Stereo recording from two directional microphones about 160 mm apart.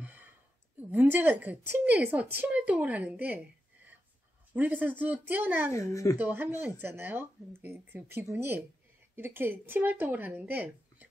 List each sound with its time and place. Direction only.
0.0 s a sound: 10° right (ahead or behind)
0.7 s a woman's voice: 10° right (ahead or behind)
4.6 s a woman's voice: 10° right (ahead or behind)
5.7 s speech: 20° left (ahead or behind)
6.1 s a woman's voice: 10° right (ahead or behind)